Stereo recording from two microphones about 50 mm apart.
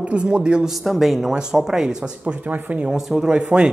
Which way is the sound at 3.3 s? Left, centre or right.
Right.